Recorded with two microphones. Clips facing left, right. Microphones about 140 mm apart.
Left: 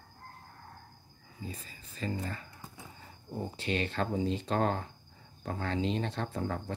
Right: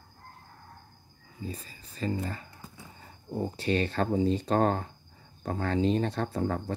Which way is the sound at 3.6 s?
40° right (ahead or behind).